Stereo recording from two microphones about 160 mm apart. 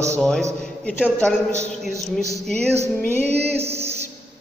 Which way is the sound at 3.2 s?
40° right (ahead or behind).